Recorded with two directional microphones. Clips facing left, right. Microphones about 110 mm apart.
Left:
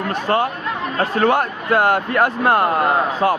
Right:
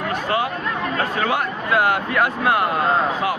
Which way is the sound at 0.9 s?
35° left (ahead or behind).